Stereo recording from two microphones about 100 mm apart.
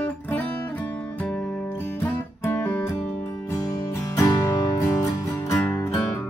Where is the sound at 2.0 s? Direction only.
25° left (ahead or behind).